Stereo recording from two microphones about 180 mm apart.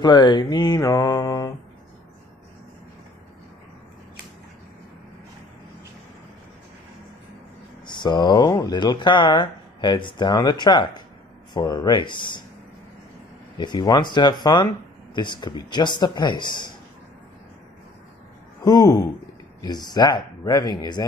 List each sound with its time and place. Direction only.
0.0 s speech: 25° left (ahead or behind)
7.8 s speech: 25° left (ahead or behind)
13.6 s speech: 25° left (ahead or behind)
18.6 s speech: 20° left (ahead or behind)